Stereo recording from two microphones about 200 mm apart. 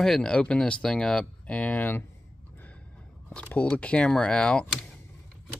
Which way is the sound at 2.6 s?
5° left (ahead or behind).